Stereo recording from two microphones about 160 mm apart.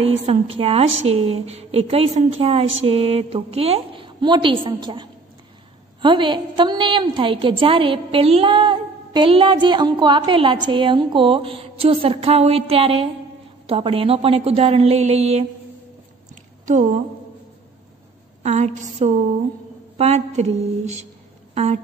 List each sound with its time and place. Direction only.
0.0 s a woman's voice: 35° right (ahead or behind)
16.6 s a woman's voice: 50° right (ahead or behind)
18.4 s a woman's voice: 45° right (ahead or behind)